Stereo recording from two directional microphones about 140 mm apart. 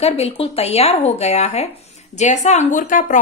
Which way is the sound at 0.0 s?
45° left (ahead or behind).